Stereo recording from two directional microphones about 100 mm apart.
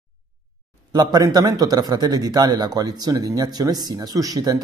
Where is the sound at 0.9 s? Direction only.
40° right (ahead or behind).